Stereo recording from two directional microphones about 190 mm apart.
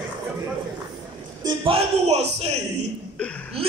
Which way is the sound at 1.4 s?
30° right (ahead or behind).